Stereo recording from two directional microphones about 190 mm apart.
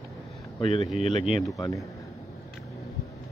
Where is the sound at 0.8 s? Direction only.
40° right (ahead or behind).